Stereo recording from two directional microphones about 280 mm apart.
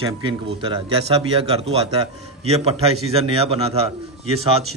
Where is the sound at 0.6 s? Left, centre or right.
Centre.